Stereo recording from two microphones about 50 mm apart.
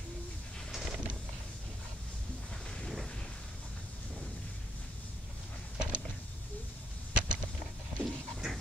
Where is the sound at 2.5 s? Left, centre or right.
Centre.